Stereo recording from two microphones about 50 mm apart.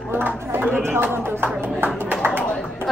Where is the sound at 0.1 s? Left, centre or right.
Right.